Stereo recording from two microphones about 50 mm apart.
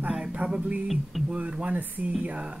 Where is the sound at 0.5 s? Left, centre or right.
Right.